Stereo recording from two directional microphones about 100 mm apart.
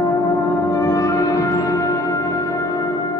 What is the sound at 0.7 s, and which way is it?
Brass instrument, 30° left (ahead or behind).